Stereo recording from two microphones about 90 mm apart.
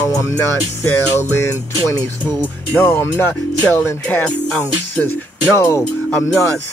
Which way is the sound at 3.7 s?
30° left (ahead or behind).